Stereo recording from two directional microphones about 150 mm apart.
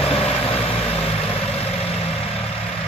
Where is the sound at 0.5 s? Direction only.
40° left (ahead or behind).